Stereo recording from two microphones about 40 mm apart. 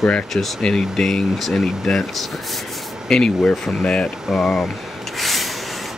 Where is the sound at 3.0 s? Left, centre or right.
Centre.